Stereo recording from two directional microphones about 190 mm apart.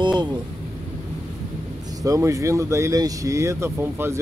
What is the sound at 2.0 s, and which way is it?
Speech, 15° right (ahead or behind).